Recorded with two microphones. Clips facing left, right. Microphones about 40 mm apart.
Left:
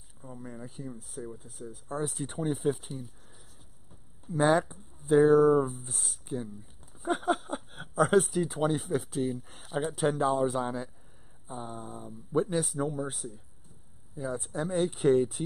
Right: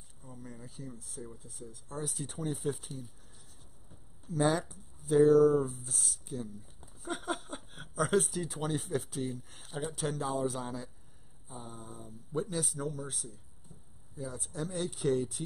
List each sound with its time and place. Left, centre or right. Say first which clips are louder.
0.2 s speech: left 6 dB; centre
2.6 s speech: left 6 dB; centre
4.3 s speech: left 5 dB; left
7.0 s speech: left 8 dB; centre
9.9 s speech: left 8 dB; left
14.2 s speech: left 6 dB; left